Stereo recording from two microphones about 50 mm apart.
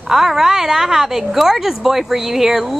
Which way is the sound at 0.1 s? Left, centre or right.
Centre.